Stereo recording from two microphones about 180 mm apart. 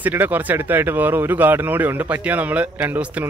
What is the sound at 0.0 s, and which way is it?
A man's voice, 10° right (ahead or behind).